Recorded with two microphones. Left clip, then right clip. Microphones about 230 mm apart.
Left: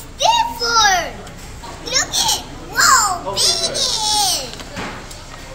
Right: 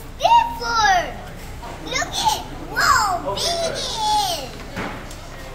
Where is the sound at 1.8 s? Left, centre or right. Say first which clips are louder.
Left 3 dB; left.